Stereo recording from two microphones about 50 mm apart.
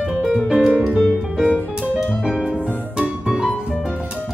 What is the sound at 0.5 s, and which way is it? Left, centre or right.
Piano, centre.